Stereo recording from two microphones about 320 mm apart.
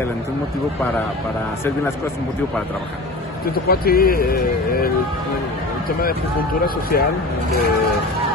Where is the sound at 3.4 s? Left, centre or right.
Left.